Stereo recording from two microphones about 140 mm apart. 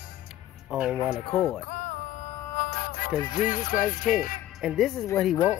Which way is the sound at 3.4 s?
70° left (ahead or behind).